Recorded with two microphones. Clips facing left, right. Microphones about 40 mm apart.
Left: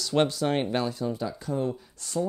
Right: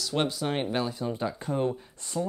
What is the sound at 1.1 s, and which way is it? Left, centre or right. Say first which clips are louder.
Speech: even; right.